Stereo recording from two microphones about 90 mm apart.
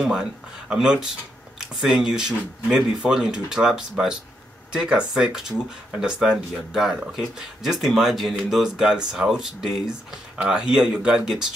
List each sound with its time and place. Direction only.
0.0 s speech: 5° right (ahead or behind)